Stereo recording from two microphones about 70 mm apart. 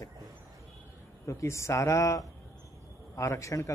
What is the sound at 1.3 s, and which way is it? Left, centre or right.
A man's voice, left.